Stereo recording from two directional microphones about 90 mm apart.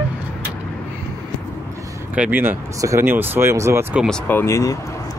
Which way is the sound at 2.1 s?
15° right (ahead or behind).